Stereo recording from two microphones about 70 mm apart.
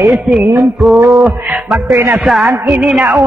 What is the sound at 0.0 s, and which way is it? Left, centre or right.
Speech, centre.